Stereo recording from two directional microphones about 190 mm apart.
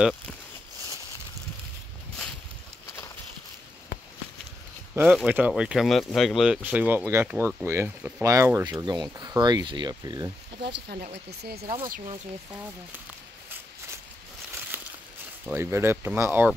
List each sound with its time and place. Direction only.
5.0 s speech: 5° right (ahead or behind); by 10.3 s 20° right (ahead or behind)
10.6 s speech: 60° right (ahead or behind)
11.6 s speech: 25° right (ahead or behind)
14.7 s a sound: 10° right (ahead or behind)
15.4 s speech: 10° right (ahead or behind)